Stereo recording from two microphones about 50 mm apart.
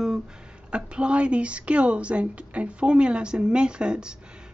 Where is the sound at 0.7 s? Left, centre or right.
Right.